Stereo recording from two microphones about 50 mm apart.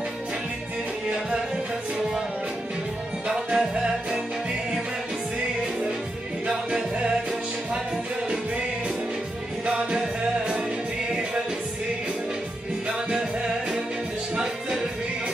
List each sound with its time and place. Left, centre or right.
3.5 s music: centre
6.4 s music: centre
8.3 s music: right
12.8 s music: centre